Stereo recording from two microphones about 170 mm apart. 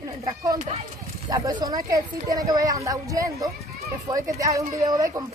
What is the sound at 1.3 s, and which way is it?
A woman's voice, 20° right (ahead or behind).